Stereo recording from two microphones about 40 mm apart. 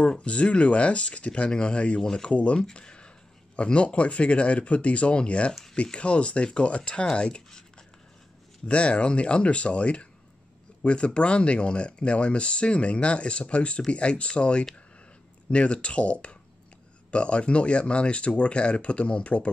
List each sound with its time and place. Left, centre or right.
0.2 s speech: left
2.0 s speech: centre
2.2 s speech: left
8.6 s speech: left